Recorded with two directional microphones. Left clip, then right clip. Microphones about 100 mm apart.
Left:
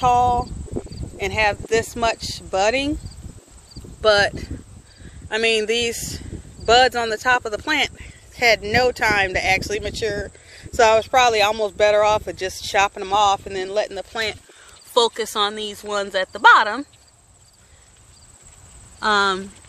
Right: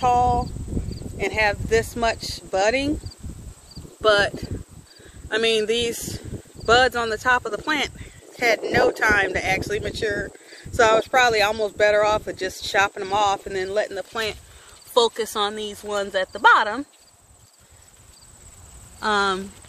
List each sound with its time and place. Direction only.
0.0 s speech: 20° left (ahead or behind)
4.0 s speech: 10° left (ahead or behind)
5.3 s speech: 5° left (ahead or behind)
9.6 s speech: 75° left (ahead or behind)
10.8 s speech: 20° left (ahead or behind); by 14.3 s centre (ahead or behind)
15.0 s speech: 20° left (ahead or behind); by 16.8 s 40° left (ahead or behind)
18.9 s speech: 40° left (ahead or behind)